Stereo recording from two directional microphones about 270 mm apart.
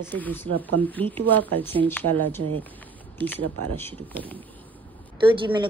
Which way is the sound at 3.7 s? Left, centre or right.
Centre.